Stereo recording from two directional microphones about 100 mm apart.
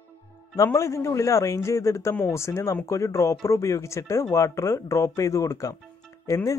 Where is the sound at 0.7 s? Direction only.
30° left (ahead or behind).